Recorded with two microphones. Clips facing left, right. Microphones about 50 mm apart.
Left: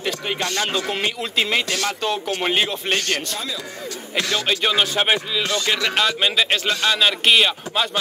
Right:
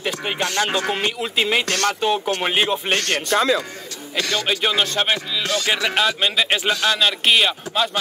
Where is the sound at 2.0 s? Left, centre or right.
Centre.